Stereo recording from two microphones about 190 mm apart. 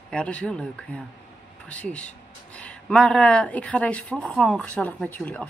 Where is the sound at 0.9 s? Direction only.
10° left (ahead or behind).